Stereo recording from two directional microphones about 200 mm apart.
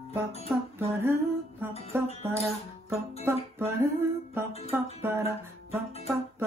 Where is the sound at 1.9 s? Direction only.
10° right (ahead or behind).